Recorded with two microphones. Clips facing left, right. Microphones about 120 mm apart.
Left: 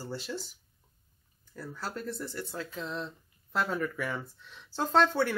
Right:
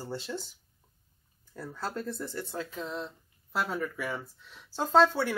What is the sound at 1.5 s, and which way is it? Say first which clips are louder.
Speech: right 2 dB; 25° right (ahead or behind).